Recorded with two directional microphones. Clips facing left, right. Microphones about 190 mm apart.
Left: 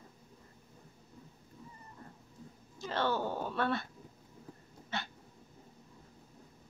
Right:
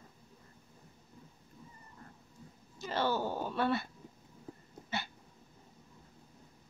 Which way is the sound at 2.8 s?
5° right (ahead or behind).